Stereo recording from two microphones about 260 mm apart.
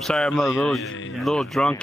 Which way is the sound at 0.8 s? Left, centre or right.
Left.